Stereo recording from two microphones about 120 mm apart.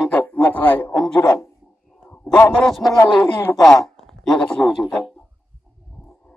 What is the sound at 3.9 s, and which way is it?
A man's voice, 5° left (ahead or behind).